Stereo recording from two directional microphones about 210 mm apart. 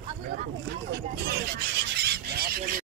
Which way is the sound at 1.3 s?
50° right (ahead or behind).